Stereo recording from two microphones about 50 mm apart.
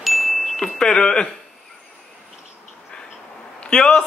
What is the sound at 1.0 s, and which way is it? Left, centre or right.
Speech, centre.